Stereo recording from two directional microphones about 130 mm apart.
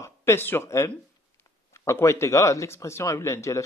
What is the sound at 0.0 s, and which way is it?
Speech, 20° left (ahead or behind).